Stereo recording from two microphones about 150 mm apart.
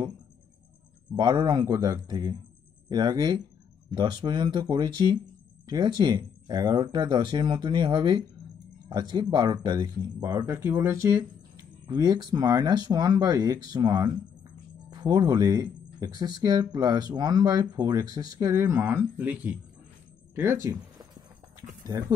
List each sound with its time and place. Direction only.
1.1 s speech: 30° right (ahead or behind)